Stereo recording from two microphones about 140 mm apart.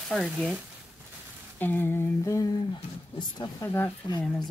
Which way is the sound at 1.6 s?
15° left (ahead or behind).